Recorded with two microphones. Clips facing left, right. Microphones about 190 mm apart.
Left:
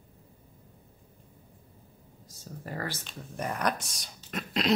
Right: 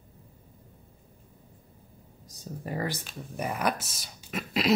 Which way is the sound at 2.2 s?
15° right (ahead or behind).